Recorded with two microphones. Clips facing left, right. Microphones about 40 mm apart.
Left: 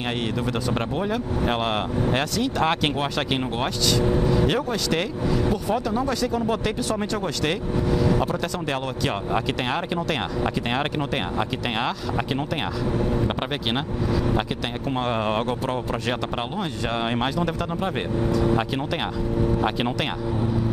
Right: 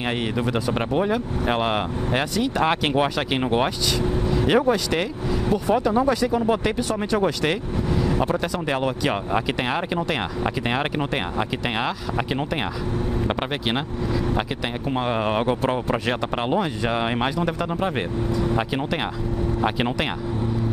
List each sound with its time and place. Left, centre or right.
0.5 s speech: centre
4.3 s vehicle: centre
4.6 s speech: centre
8.0 s vehicle: centre
8.6 s speech: centre
13.7 s speech: centre
15.6 s speech: right
16.1 s speech: centre